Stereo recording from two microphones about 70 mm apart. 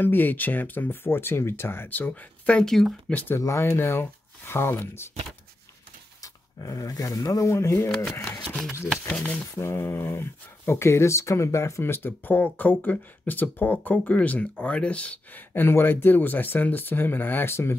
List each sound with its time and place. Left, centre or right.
0.0 s speech: left
2.6 s speech: centre
3.1 s speech: left
3.3 s speech: left
6.2 s speech: left
7.4 s speech: left
9.0 s speech: centre
9.6 s speech: left
11.8 s speech: left; by 15.4 s centre
15.5 s speech: left